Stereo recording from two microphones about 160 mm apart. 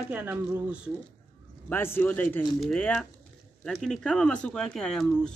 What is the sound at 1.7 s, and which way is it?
Speech, 15° left (ahead or behind).